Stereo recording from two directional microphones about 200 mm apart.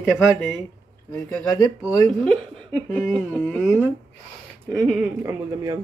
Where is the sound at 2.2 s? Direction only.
Centre (ahead or behind).